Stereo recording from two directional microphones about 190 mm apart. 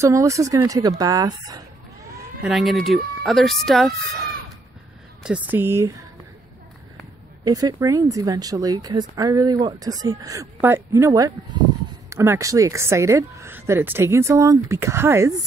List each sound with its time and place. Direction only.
0.0 s a woman's voice: 15° right (ahead or behind)
2.4 s a woman's voice: centre (ahead or behind)
7.4 s a woman's voice: 20° right (ahead or behind)